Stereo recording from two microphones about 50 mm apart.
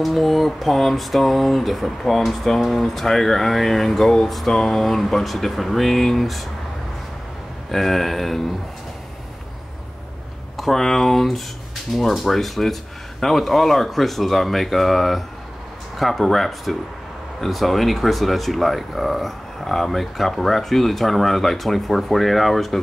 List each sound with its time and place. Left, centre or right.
0.0 s speech: centre
7.7 s speech: centre
10.6 s speech: centre